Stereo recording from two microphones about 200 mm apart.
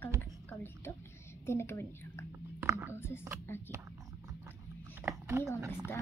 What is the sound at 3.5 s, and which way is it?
Speech, 10° left (ahead or behind).